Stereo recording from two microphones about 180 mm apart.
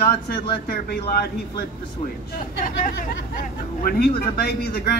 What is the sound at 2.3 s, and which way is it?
Speech, 50° left (ahead or behind).